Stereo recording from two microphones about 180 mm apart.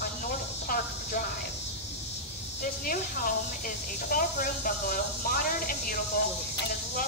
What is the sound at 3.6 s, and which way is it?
Speech, 50° left (ahead or behind).